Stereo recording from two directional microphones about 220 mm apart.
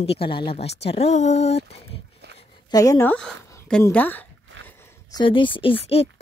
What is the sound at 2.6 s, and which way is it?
Speech, 15° left (ahead or behind).